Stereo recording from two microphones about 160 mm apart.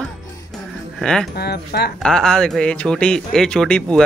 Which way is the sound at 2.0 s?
5° left (ahead or behind).